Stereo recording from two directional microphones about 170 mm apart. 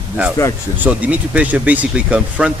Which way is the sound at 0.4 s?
15° left (ahead or behind).